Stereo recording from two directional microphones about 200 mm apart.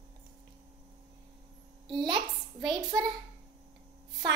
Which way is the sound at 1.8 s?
25° right (ahead or behind).